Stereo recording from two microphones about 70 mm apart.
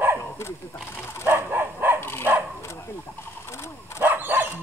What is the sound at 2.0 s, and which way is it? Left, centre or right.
Dog, left.